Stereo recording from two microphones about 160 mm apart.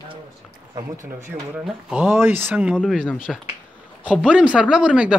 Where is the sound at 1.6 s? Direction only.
Centre (ahead or behind).